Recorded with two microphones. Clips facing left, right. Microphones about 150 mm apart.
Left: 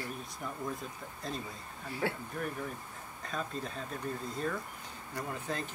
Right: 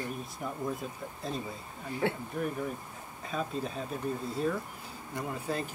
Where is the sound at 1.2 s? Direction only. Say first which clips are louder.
Right 3 dB; centre (ahead or behind).